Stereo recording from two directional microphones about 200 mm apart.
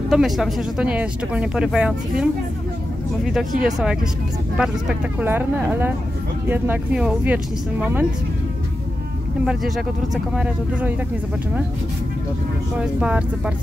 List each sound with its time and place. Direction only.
0.1 s speech: centre (ahead or behind)
3.3 s speech: centre (ahead or behind)
9.5 s speech: centre (ahead or behind)
12.7 s speech: 5° right (ahead or behind)